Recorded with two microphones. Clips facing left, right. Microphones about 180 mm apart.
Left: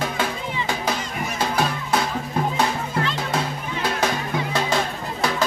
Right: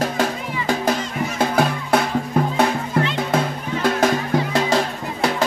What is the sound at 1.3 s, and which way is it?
Music, 55° right (ahead or behind).